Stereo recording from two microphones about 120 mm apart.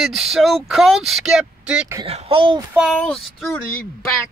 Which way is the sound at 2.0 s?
55° right (ahead or behind).